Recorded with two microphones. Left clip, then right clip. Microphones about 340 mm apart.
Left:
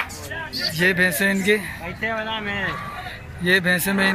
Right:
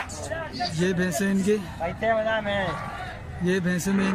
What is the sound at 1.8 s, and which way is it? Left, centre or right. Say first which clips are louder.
Speech: right 6 dB; right.